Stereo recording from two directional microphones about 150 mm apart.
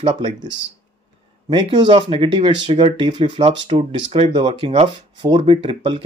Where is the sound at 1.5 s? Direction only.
35° right (ahead or behind).